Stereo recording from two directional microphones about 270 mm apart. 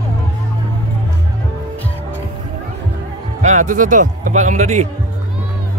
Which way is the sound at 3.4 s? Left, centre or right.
Right.